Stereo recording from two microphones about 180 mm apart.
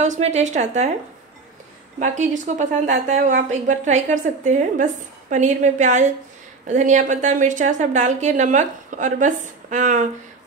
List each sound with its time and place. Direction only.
0.0 s a woman's voice: 40° right (ahead or behind)
2.0 s a woman's voice: 45° right (ahead or behind)